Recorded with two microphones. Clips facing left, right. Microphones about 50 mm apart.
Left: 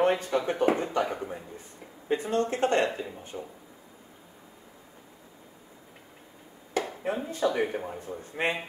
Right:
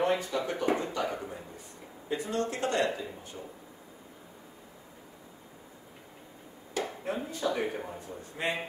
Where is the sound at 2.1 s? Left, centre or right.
Left.